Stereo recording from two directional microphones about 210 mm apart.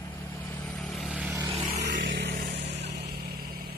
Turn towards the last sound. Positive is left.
turn(degrees=-45)  # may be behind; listen again after turning